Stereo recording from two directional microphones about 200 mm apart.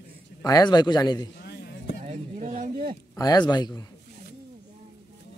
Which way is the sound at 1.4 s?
55° left (ahead or behind).